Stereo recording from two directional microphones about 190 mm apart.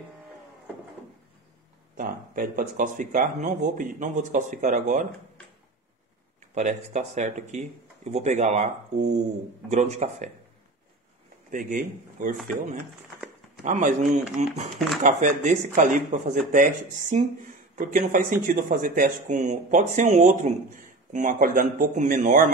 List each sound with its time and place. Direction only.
2.0 s speech: 45° right (ahead or behind)
6.5 s speech: 40° right (ahead or behind)
11.5 s speech: 45° right (ahead or behind)
13.7 s speech: 40° right (ahead or behind)